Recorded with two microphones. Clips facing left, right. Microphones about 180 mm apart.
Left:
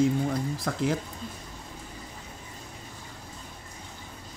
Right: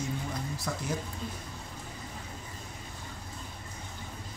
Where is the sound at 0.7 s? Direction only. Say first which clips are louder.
Even; 60° left (ahead or behind).